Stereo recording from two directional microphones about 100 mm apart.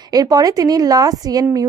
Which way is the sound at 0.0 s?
40° right (ahead or behind).